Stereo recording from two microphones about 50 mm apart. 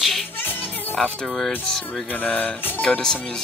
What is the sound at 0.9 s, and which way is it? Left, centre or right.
Speech, centre.